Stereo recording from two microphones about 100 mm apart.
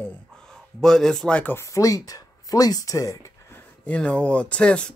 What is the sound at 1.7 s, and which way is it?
Speech, 35° left (ahead or behind).